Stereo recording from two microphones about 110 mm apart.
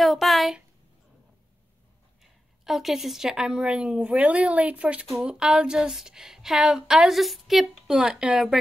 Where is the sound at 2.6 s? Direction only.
Centre (ahead or behind).